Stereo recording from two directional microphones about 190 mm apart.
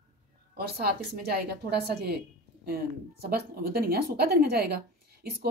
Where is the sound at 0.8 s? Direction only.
55° right (ahead or behind).